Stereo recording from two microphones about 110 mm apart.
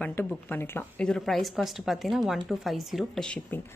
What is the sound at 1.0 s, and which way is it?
A woman's voice, 5° left (ahead or behind).